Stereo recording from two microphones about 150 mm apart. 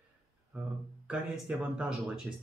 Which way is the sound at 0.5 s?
10° right (ahead or behind).